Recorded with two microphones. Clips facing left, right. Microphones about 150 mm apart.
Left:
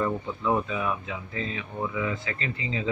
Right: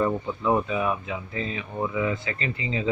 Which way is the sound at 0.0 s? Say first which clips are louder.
Right 3 dB; 25° right (ahead or behind).